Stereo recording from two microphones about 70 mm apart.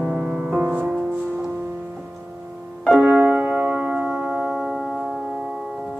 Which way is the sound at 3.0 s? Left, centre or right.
Right.